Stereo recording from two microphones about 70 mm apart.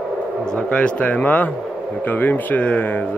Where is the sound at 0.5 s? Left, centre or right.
Centre.